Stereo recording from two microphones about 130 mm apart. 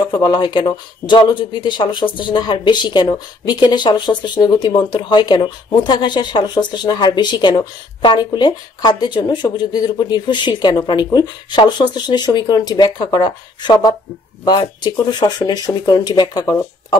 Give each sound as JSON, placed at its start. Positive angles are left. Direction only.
{"t": 0.0, "sound": "speech", "side_deg": 40}